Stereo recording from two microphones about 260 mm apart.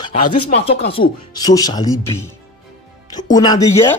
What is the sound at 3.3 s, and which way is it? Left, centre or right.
Speech, centre.